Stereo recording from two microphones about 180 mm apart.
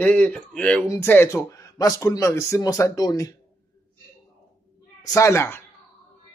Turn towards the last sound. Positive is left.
turn(degrees=15)  # may be behind; listen again after turning